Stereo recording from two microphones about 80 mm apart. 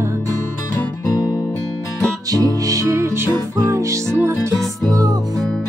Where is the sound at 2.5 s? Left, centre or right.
Right.